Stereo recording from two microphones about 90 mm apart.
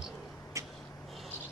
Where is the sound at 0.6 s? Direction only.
35° right (ahead or behind).